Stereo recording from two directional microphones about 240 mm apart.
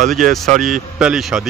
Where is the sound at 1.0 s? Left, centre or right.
Centre.